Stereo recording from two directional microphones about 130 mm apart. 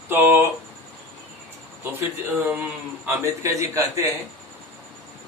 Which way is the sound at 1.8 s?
15° right (ahead or behind).